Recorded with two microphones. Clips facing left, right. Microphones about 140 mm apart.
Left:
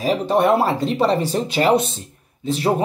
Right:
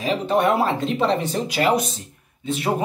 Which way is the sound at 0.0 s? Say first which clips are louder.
Left 2 dB; 35° left (ahead or behind).